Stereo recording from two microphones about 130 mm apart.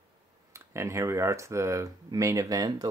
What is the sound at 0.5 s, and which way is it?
Speech, 20° right (ahead or behind).